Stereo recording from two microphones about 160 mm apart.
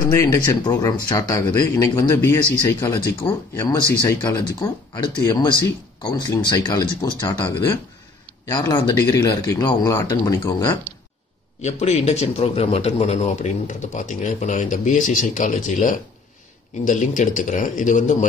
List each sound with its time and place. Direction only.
0.1 s speech: 20° left (ahead or behind)
3.3 s speech: 15° left (ahead or behind)
11.6 s a man's voice: 45° left (ahead or behind)